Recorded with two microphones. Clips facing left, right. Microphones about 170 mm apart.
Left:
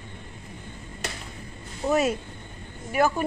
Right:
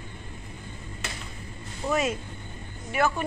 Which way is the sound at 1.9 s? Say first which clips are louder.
Left 3 dB; 40° left (ahead or behind).